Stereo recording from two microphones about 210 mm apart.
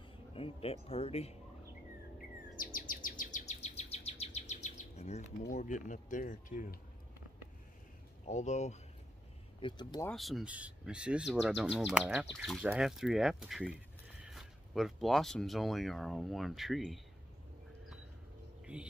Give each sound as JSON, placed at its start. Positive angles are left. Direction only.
{"t": 0.3, "sound": "speech", "side_deg": 25}
{"t": 2.5, "sound": "bird", "side_deg": 40}
{"t": 5.5, "sound": "speech", "side_deg": 35}
{"t": 8.3, "sound": "speech", "side_deg": 35}
{"t": 9.6, "sound": "speech", "side_deg": 20}
{"t": 10.0, "sound": "speech", "side_deg": 0}
{"t": 18.7, "sound": "speech", "side_deg": -5}